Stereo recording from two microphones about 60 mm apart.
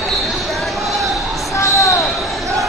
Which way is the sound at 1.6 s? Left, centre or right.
Left.